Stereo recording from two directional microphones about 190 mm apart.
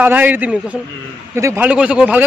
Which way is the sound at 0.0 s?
10° right (ahead or behind).